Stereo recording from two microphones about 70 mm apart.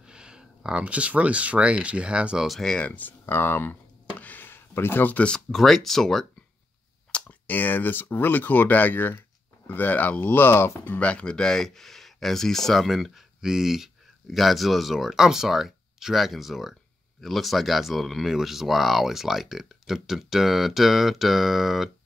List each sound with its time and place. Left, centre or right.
0.0 s speech: centre
2.4 s speech: centre
3.0 s speech: left
4.2 s a sound: left
5.5 s speech: centre
7.1 s speech: centre; by 11.0 s left
11.0 s speech: centre